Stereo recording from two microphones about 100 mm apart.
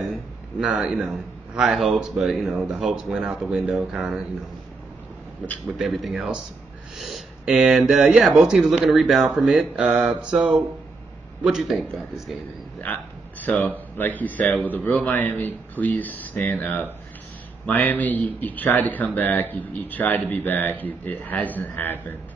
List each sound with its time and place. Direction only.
0.0 s a man's voice: 5° right (ahead or behind)
5.4 s a man's voice: 5° right (ahead or behind)
12.8 s speech: 15° left (ahead or behind)